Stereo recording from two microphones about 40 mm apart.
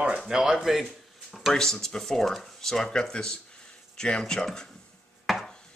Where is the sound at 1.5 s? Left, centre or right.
Centre.